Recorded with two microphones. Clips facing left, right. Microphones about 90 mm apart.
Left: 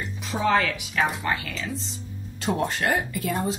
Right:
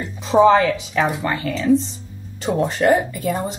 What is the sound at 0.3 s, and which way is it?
Speech, 90° right.